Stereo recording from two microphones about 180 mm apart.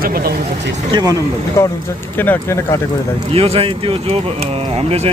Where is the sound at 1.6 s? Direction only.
15° left (ahead or behind).